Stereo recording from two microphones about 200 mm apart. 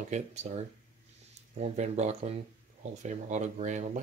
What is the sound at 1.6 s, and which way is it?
Speech, 35° right (ahead or behind).